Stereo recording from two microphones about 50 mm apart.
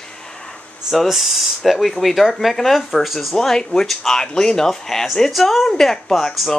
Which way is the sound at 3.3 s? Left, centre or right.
Centre.